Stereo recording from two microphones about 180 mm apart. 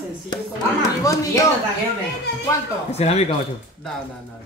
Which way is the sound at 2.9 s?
35° left (ahead or behind).